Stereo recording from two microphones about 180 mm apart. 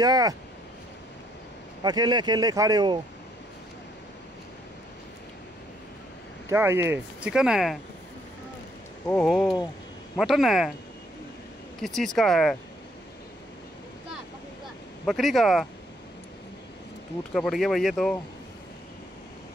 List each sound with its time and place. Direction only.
0.0 s speech: 20° right (ahead or behind)
1.8 s speech: 25° right (ahead or behind)
6.5 s speech: 15° right (ahead or behind)
9.0 s speech: 5° left (ahead or behind)
11.8 s speech: 5° left (ahead or behind)
15.0 s speech: centre (ahead or behind)
17.3 s speech: centre (ahead or behind)